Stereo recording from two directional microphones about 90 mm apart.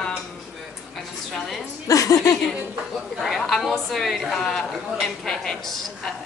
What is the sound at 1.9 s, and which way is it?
Speech, 40° left (ahead or behind).